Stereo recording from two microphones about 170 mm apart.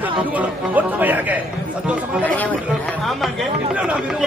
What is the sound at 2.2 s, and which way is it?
Speech, 10° left (ahead or behind).